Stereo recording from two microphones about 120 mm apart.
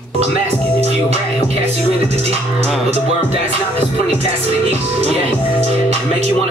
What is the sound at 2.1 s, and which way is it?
Music, 60° right (ahead or behind).